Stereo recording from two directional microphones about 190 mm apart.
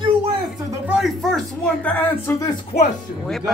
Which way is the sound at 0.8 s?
Centre (ahead or behind).